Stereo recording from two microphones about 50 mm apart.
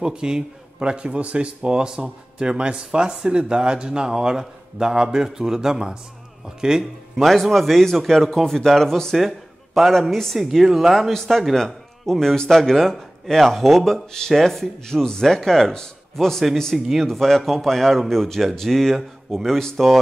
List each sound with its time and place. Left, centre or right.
0.0 s speech: centre
7.2 s speech: centre